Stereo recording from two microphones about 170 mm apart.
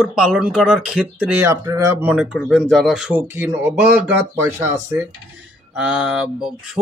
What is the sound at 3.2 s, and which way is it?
Speech, 15° right (ahead or behind).